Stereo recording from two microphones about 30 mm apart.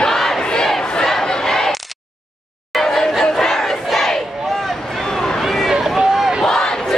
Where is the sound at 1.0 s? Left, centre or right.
Centre.